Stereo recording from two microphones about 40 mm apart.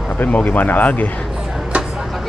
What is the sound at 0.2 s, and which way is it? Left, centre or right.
Speech, left.